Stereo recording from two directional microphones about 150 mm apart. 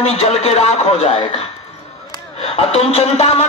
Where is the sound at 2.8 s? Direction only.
45° left (ahead or behind).